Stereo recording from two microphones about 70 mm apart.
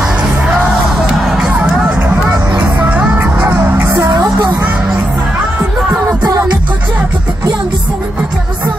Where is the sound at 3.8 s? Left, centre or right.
Right.